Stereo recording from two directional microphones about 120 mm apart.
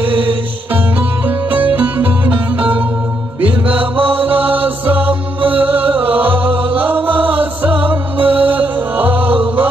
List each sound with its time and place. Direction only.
0.0 s music: 45° right (ahead or behind)
1.5 s music: 15° right (ahead or behind)